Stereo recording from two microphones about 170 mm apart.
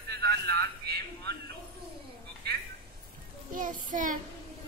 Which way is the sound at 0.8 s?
75° right (ahead or behind).